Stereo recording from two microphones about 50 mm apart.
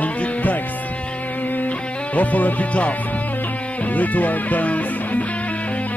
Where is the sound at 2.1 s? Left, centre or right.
Left.